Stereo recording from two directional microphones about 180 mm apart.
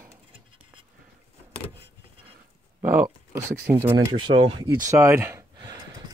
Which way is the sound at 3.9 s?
25° right (ahead or behind).